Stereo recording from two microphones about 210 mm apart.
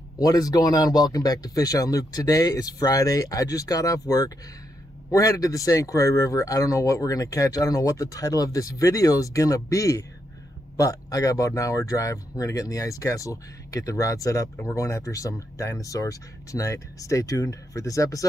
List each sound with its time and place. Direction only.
0.2 s speech: 15° left (ahead or behind)